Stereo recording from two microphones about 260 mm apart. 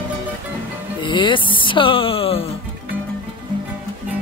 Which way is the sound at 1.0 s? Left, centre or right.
Centre.